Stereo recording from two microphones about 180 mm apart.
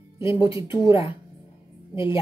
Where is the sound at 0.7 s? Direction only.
25° left (ahead or behind).